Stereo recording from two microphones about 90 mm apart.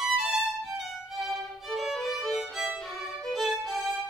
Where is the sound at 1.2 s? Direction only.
Centre (ahead or behind).